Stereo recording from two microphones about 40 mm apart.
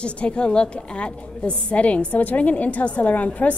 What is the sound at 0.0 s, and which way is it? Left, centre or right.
A woman's voice, left.